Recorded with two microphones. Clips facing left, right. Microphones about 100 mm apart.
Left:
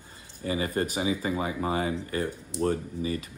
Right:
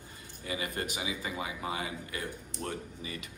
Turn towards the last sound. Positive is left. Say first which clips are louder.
# left 10 dB
turn(degrees=35)  # may be behind; listen again after turning